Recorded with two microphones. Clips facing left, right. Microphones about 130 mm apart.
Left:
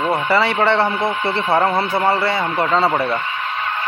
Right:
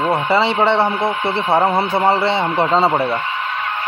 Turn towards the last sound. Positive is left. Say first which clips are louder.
# right 2 dB
turn(degrees=-20)  # may be behind; listen again after turning